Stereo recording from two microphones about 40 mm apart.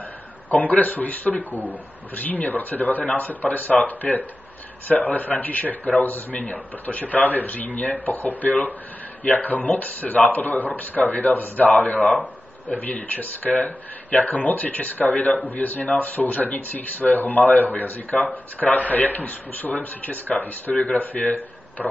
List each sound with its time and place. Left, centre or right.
0.5 s speech: left
15.1 s speech: left
15.5 s speech: left